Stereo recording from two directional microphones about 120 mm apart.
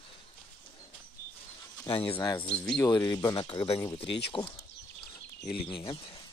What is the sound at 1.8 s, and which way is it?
Speech, 50° left (ahead or behind).